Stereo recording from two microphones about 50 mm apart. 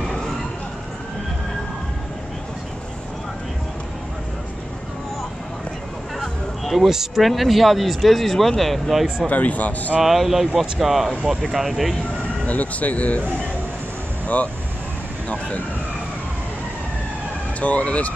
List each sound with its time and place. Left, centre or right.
6.1 s a sound: centre
6.9 s speech: centre
9.3 s a man's voice: left
9.9 s speech: centre
12.4 s speech: left
14.2 s speech: left
17.6 s speech: left